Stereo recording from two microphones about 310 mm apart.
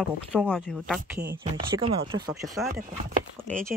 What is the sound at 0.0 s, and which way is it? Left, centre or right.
Speech, centre.